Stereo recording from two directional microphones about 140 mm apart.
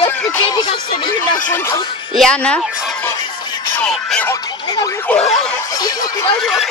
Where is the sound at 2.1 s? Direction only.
5° left (ahead or behind).